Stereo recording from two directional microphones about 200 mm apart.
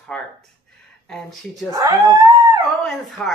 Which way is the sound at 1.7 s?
15° right (ahead or behind).